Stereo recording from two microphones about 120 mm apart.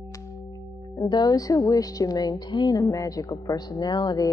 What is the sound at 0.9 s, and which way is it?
Speech, 35° left (ahead or behind).